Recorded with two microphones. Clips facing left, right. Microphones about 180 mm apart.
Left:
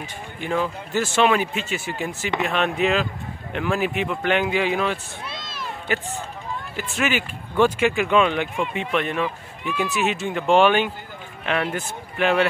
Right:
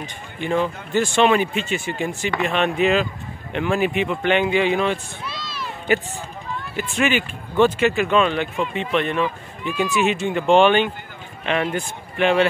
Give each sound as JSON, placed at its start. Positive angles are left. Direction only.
{"t": 0.0, "sound": "speech", "side_deg": 5}
{"t": 5.3, "sound": "a sound", "side_deg": 50}
{"t": 6.8, "sound": "speech", "side_deg": 5}